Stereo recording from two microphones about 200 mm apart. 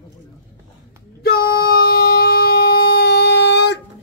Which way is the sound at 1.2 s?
50° left (ahead or behind).